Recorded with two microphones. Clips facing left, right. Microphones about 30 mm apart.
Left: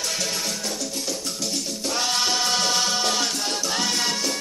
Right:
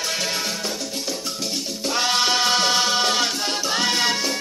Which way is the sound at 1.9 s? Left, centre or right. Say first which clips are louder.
Right 4 dB; centre.